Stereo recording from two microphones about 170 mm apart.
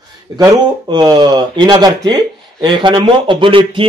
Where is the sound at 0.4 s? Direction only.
25° right (ahead or behind).